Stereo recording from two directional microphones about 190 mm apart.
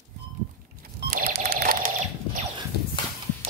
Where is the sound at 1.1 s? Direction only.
55° right (ahead or behind).